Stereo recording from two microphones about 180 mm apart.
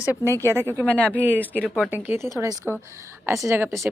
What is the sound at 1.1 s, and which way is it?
Speech, 10° right (ahead or behind).